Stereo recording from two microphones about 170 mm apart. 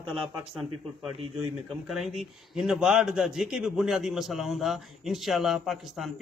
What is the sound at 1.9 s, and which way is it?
A man's voice, centre (ahead or behind).